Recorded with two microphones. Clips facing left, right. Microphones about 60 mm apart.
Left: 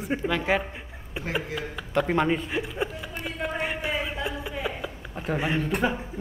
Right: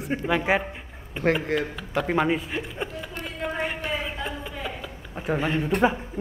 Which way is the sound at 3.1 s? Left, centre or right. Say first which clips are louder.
Even; centre.